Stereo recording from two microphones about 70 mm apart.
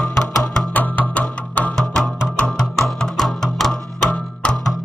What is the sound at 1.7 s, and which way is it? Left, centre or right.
Music, centre.